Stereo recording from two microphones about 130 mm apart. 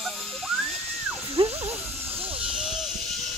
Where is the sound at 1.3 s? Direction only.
50° right (ahead or behind).